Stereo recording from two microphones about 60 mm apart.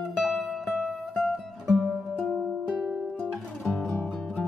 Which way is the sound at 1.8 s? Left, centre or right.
Centre.